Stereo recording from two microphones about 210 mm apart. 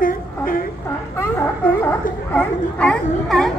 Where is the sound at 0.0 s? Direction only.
40° left (ahead or behind).